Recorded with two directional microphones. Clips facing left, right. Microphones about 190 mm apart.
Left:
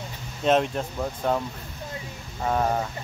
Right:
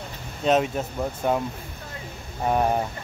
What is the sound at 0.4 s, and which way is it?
Speech, centre (ahead or behind).